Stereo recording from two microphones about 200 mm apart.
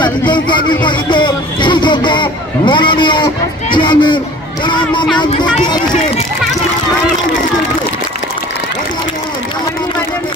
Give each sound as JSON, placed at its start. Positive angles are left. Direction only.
{"t": 0.0, "sound": "speech", "side_deg": 25}